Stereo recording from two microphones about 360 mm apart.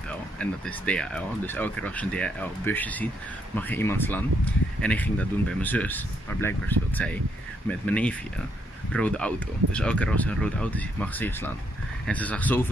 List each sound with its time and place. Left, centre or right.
0.4 s speech: centre